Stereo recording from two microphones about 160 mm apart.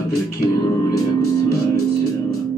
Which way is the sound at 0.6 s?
20° left (ahead or behind).